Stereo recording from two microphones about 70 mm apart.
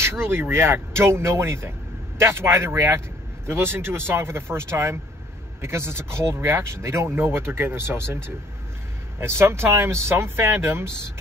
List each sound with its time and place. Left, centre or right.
0.0 s speech: right